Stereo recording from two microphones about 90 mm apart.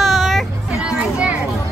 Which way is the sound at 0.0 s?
Centre (ahead or behind).